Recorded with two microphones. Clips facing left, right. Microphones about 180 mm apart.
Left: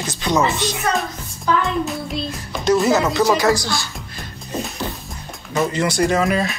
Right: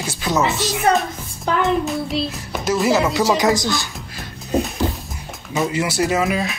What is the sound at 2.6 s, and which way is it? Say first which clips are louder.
Music: left 2 dB; 5° right (ahead or behind).